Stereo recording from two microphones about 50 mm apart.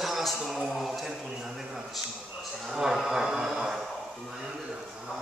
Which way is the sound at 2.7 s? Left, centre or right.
Centre.